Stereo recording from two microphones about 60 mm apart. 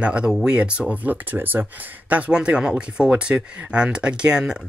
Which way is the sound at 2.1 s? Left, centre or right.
Centre.